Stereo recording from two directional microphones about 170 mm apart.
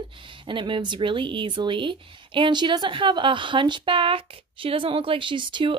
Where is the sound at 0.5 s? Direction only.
30° right (ahead or behind).